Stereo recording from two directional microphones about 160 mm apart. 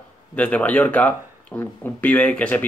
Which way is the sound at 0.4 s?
10° left (ahead or behind).